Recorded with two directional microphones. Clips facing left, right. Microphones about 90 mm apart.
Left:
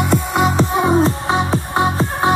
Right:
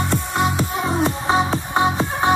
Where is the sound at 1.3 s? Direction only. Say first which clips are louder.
Left 1 dB; centre (ahead or behind).